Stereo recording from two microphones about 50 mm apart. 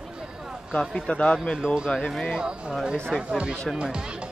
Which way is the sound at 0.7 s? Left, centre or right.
Centre.